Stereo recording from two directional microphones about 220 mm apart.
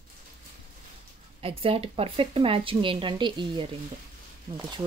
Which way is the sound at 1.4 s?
25° right (ahead or behind).